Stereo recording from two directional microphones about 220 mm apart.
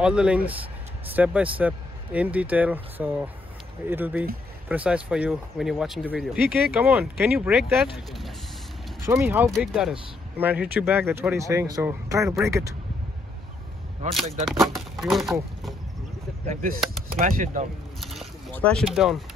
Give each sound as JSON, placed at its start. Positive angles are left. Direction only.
{"t": 0.0, "sound": "speech", "side_deg": -5}
{"t": 9.0, "sound": "speech", "side_deg": -15}
{"t": 9.5, "sound": "speech", "side_deg": 0}
{"t": 14.4, "sound": "speech", "side_deg": 0}
{"t": 17.2, "sound": "speech", "side_deg": -40}
{"t": 18.0, "sound": "a sound", "side_deg": 0}